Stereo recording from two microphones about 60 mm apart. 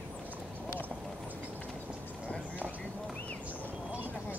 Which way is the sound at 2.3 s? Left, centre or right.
Left.